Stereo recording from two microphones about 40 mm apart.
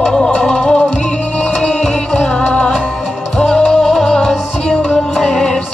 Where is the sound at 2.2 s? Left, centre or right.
Centre.